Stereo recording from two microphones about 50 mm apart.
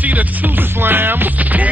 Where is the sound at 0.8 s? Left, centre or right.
Right.